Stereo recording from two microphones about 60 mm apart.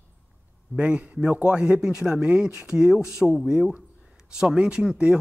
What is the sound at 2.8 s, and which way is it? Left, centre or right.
Speech, centre.